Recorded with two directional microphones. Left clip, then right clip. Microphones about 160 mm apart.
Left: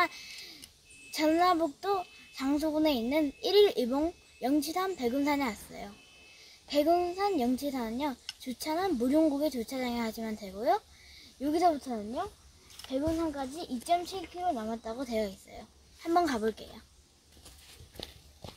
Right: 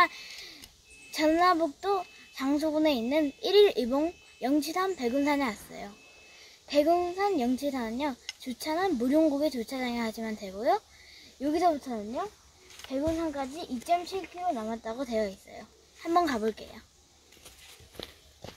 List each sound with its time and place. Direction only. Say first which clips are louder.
0.0 s a sound: right 5 dB; 25° right (ahead or behind)
1.1 s a child's voice: right 2 dB; 25° right (ahead or behind)
18.0 s walk: right 2 dB; 35° right (ahead or behind)